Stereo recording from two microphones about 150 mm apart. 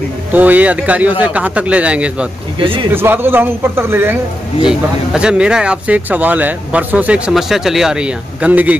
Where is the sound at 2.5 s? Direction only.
35° right (ahead or behind).